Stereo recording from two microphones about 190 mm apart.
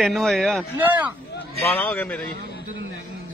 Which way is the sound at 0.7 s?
10° right (ahead or behind).